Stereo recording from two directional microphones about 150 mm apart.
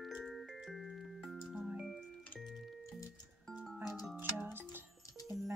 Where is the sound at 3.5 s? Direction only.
5° left (ahead or behind).